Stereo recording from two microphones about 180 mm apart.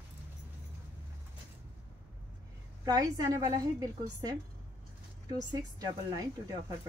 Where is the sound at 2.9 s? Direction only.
20° right (ahead or behind).